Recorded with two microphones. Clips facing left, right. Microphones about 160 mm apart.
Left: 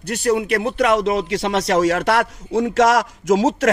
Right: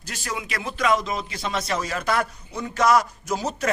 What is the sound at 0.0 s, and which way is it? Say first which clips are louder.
Speech: left 14 dB; 65° left (ahead or behind).